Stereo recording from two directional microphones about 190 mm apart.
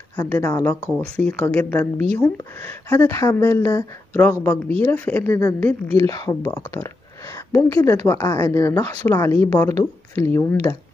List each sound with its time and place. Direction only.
0.1 s speech: 10° left (ahead or behind)